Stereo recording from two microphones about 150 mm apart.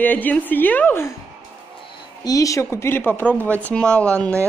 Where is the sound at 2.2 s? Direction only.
20° left (ahead or behind).